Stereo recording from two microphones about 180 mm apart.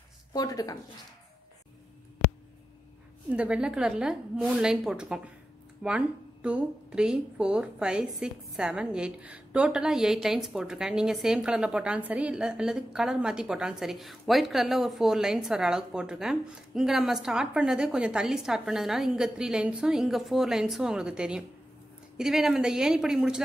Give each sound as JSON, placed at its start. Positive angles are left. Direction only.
{"t": 0.3, "sound": "speech", "side_deg": 20}
{"t": 3.3, "sound": "speech", "side_deg": -5}